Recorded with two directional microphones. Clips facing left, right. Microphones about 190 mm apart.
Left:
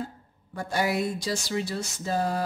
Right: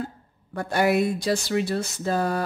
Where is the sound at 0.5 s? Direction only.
60° right (ahead or behind).